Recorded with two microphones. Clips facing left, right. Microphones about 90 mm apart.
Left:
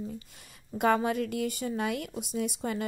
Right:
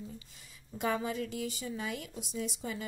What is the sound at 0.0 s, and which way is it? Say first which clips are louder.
Speech: left 7 dB; 60° left (ahead or behind).